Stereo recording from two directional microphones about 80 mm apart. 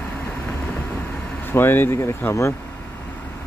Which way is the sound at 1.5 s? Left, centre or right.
Left.